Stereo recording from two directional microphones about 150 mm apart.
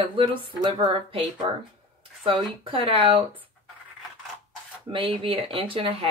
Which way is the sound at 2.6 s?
35° right (ahead or behind).